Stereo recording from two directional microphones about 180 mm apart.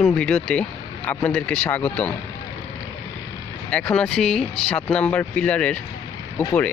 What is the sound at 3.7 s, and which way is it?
Speech, 5° left (ahead or behind).